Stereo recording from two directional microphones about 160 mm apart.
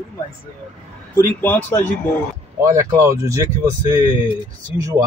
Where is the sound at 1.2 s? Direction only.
15° left (ahead or behind).